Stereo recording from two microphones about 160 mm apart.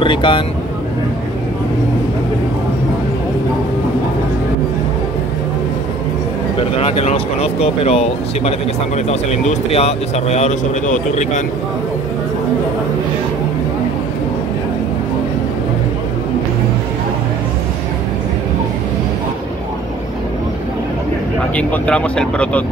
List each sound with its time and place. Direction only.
0.0 s speech: 30° left (ahead or behind)
6.8 s speech: 35° left (ahead or behind)
21.5 s speech: 5° left (ahead or behind)